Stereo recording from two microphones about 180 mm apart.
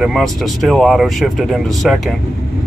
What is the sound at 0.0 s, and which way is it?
Speech, centre (ahead or behind).